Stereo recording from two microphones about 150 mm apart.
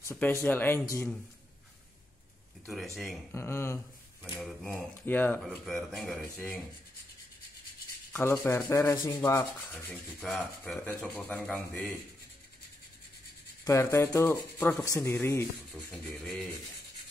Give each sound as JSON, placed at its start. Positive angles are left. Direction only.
{"t": 0.0, "sound": "speech", "side_deg": 15}
{"t": 2.6, "sound": "a man's voice", "side_deg": 0}
{"t": 3.3, "sound": "speech", "side_deg": 15}
{"t": 4.4, "sound": "a man's voice", "side_deg": 0}
{"t": 5.0, "sound": "speech", "side_deg": 15}
{"t": 5.4, "sound": "a man's voice", "side_deg": 0}
{"t": 8.1, "sound": "speech", "side_deg": 15}
{"t": 8.9, "sound": "rub", "side_deg": 25}
{"t": 10.2, "sound": "a man's voice", "side_deg": 0}
{"t": 13.7, "sound": "speech", "side_deg": 20}
{"t": 15.7, "sound": "a man's voice", "side_deg": 0}